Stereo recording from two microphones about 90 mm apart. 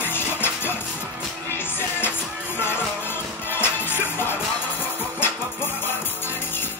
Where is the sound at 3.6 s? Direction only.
25° left (ahead or behind).